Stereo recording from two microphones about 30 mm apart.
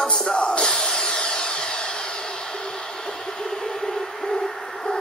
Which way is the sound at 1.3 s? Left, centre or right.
Left.